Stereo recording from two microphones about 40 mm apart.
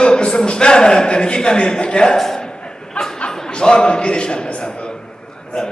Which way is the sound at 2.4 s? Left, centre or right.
Left.